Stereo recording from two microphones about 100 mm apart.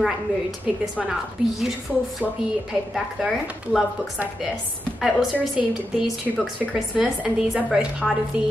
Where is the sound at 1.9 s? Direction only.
15° right (ahead or behind).